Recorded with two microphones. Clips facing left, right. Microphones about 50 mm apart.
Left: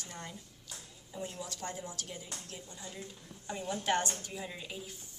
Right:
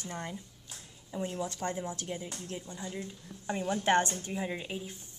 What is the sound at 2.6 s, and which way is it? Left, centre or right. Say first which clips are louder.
A woman's voice: right 6 dB; right.